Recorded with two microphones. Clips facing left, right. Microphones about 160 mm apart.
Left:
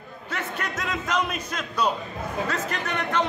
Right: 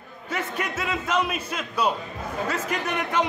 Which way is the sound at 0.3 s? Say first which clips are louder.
Right 2 dB; 10° right (ahead or behind).